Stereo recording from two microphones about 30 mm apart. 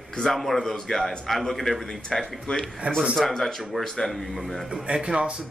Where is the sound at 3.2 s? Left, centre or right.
Centre.